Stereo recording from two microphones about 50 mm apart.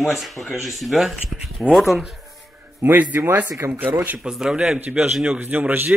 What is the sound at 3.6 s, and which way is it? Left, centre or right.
Speech, right.